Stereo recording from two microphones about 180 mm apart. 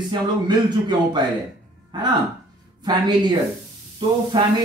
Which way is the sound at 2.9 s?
25° right (ahead or behind).